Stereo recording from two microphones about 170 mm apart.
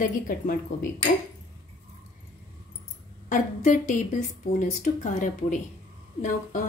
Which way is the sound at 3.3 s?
45° left (ahead or behind).